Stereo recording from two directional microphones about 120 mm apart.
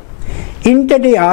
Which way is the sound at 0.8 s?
10° left (ahead or behind).